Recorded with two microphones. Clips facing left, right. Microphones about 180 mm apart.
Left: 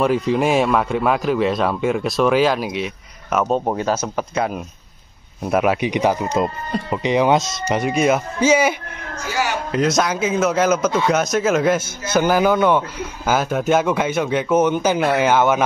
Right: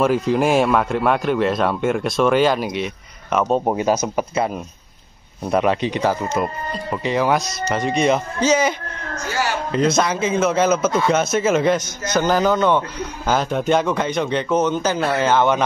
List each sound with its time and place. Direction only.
0.0 s speech: centre (ahead or behind)
3.6 s speech: 15° right (ahead or behind)
5.4 s a man's voice: 5° left (ahead or behind); by 7.5 s 20° left (ahead or behind)
7.6 s a man's voice: 10° left (ahead or behind)
9.3 s a sound: 10° left (ahead or behind)
9.8 s a man's voice: centre (ahead or behind)